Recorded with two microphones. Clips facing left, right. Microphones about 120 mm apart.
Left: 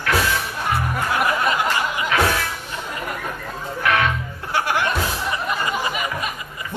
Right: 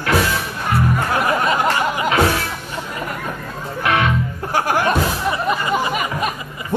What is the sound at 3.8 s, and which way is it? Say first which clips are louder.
Music: right 2 dB; 25° right (ahead or behind).